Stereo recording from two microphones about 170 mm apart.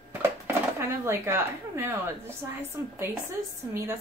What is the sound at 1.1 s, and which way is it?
A woman's voice, 15° right (ahead or behind).